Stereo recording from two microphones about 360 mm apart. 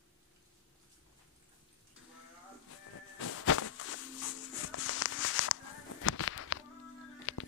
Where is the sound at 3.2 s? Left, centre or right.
Left.